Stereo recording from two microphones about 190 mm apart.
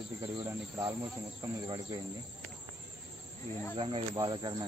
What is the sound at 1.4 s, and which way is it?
Cricket, 15° right (ahead or behind).